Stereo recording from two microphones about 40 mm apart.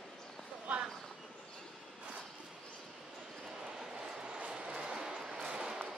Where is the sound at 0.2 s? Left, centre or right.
Centre.